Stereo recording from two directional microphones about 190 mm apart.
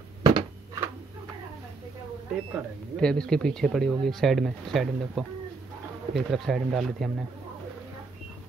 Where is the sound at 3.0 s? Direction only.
5° left (ahead or behind).